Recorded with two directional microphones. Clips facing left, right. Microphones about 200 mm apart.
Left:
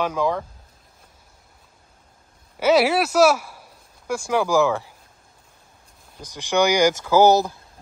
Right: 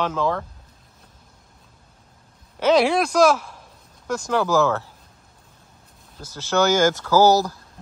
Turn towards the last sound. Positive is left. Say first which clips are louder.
# left 1 dB
turn(degrees=20)  # may be behind; listen again after turning